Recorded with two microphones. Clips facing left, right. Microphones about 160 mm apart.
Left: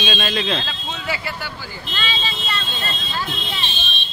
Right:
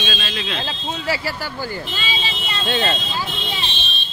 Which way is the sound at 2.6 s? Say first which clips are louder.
Right 9 dB; 90° right.